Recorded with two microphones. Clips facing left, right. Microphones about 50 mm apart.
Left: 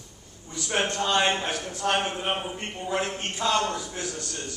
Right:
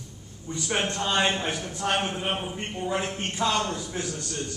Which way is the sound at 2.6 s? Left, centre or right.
Centre.